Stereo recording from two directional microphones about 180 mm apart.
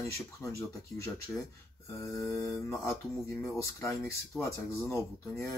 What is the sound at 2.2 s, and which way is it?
Speech, 15° left (ahead or behind).